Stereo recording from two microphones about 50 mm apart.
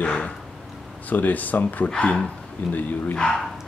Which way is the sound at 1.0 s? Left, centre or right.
Left.